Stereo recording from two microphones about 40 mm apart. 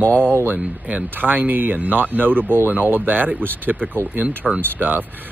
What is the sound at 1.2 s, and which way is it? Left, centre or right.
Speech, right.